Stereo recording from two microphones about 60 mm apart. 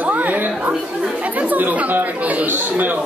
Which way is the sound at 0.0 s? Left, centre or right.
Right.